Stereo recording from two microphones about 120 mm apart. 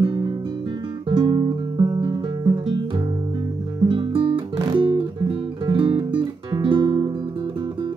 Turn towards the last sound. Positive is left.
turn(degrees=-35)  # may be behind; listen again after turning